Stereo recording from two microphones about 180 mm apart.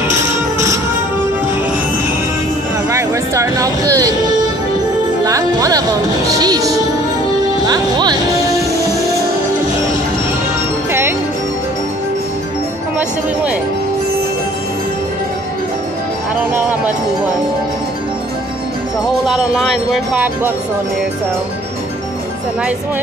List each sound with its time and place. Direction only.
0.1 s music: 15° right (ahead or behind)
2.9 s a sound: 15° right (ahead or behind)
5.2 s music: 20° right (ahead or behind)
10.9 s music: 10° right (ahead or behind)
19.2 s music: centre (ahead or behind)